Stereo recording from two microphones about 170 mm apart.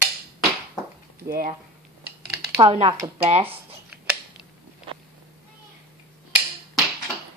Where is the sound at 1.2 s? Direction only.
60° right (ahead or behind).